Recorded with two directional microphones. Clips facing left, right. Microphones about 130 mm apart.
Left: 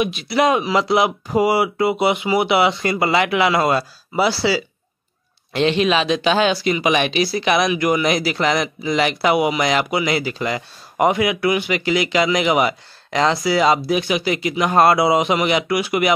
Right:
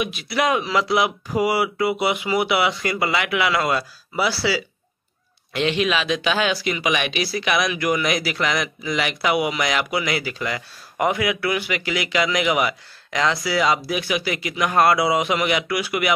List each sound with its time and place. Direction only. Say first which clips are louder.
0.0 s speech: left 5 dB; 25° left (ahead or behind)